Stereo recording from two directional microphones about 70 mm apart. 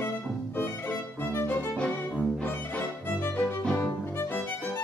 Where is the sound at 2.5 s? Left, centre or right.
Left.